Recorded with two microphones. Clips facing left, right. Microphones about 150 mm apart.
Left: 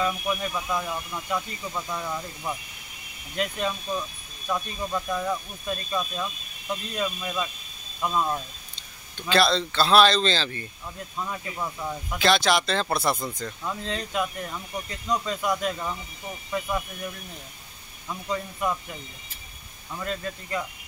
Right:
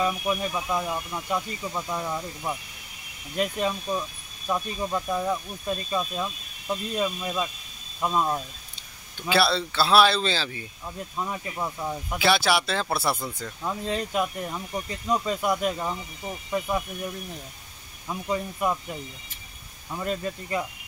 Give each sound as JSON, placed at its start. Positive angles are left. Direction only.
{"t": 0.0, "sound": "speech", "side_deg": -15}
{"t": 13.6, "sound": "speech", "side_deg": -15}
{"t": 16.4, "sound": "speech", "side_deg": -20}
{"t": 18.0, "sound": "speech", "side_deg": -15}
{"t": 19.9, "sound": "speech", "side_deg": -15}